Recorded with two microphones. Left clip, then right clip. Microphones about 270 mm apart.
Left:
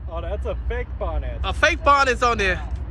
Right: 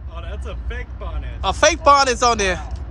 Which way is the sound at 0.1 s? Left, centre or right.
Centre.